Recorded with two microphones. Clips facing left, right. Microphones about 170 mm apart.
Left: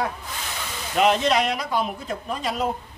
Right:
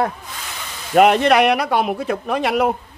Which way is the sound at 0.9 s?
60° right (ahead or behind).